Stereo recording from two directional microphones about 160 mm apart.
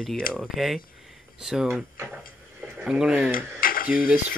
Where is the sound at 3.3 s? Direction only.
60° left (ahead or behind).